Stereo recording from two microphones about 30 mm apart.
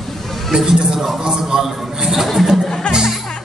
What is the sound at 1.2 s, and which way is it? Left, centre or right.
A man's voice, right.